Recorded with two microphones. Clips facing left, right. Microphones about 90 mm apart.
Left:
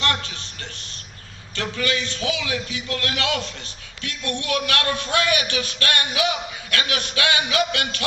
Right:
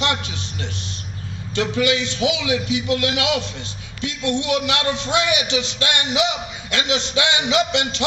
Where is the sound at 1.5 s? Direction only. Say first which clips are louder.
Right 6 dB; 20° right (ahead or behind).